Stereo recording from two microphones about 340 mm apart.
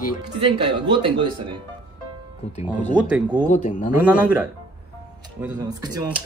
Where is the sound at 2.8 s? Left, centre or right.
Centre.